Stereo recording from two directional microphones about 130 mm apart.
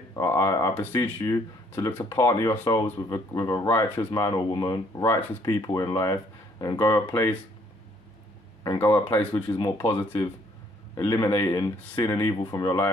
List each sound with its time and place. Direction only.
0.1 s speech: 20° left (ahead or behind)
3.6 s speech: 15° left (ahead or behind)
4.1 s speech: 30° left (ahead or behind)
8.7 s speech: 15° left (ahead or behind)
11.1 s speech: 30° left (ahead or behind)